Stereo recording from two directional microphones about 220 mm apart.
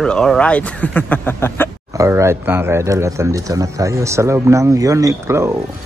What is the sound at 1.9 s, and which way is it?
Speech, 15° right (ahead or behind).